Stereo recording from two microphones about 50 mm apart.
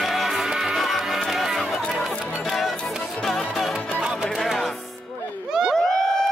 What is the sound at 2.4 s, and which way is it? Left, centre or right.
Music, centre.